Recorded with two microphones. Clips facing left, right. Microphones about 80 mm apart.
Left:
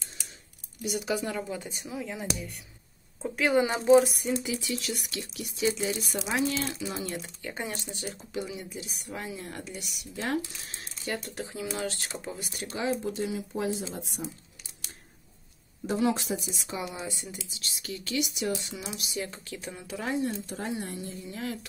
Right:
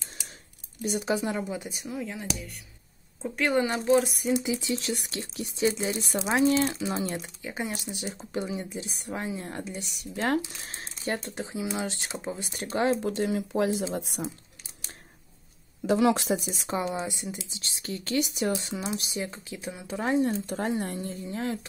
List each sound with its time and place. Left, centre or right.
0.8 s speech: right
1.7 s speech: centre
3.6 s a woman's voice: centre
3.9 s speech: centre
4.3 s speech: right
7.2 s speech: centre
8.3 s speech: right
13.0 s speech: right
15.9 s speech: right
16.4 s speech: right
18.6 s speech: right
19.9 s speech: right
20.4 s speech: right